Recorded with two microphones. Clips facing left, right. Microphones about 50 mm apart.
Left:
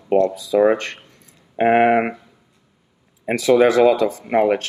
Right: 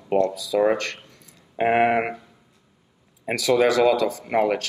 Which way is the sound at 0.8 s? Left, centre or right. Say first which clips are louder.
Even; left.